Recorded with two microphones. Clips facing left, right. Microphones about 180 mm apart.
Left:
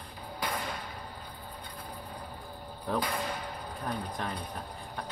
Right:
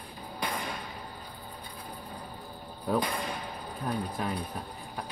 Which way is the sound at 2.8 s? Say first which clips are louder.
Right 2 dB; 10° right (ahead or behind).